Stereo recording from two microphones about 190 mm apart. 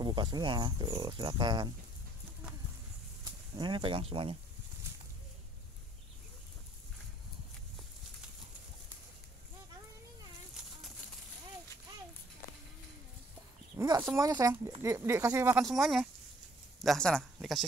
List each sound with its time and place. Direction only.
0.0 s speech: 25° right (ahead or behind)
3.5 s speech: 25° right (ahead or behind)
13.7 s speech: 20° right (ahead or behind)
15.6 s speech: centre (ahead or behind)